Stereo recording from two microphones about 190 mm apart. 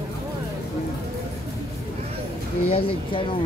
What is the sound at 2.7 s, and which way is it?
Speech, 30° left (ahead or behind).